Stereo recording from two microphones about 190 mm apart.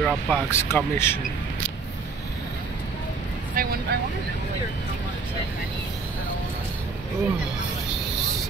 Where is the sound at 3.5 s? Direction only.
50° right (ahead or behind).